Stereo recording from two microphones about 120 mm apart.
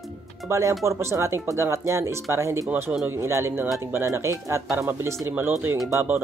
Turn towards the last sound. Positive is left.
turn(degrees=-20)  # may be behind; listen again after turning